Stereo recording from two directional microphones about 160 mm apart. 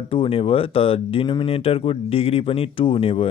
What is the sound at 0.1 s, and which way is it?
Speech, 35° left (ahead or behind).